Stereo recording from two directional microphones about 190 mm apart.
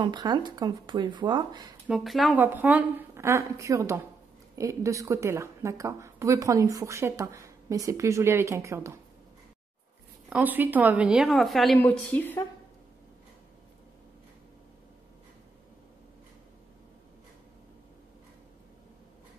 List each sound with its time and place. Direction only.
0.0 s speech: 20° right (ahead or behind)
1.9 s a woman's voice: centre (ahead or behind)
10.3 s a woman's voice: 10° right (ahead or behind); by 12.4 s 10° left (ahead or behind)